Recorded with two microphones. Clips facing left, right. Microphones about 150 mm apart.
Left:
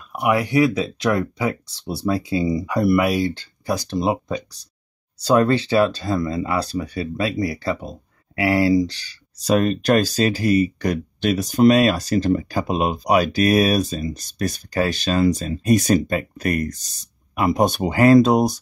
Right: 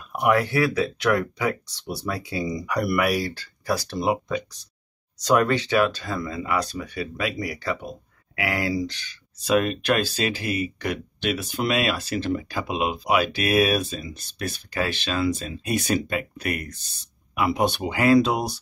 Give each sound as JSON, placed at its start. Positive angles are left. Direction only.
{"t": 0.1, "sound": "speech", "side_deg": 10}